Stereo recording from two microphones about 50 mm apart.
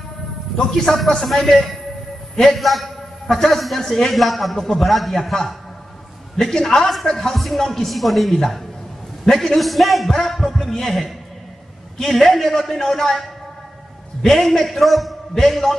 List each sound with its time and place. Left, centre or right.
0.7 s a man's voice: centre
9.6 s a man's voice: centre
14.2 s a man's voice: centre